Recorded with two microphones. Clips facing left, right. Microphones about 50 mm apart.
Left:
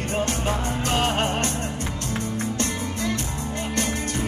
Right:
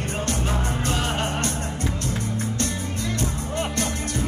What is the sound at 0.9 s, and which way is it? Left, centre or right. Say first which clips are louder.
Music: left 5 dB; left.